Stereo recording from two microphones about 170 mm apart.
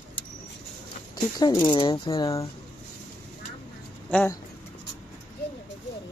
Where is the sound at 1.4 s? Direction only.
20° left (ahead or behind).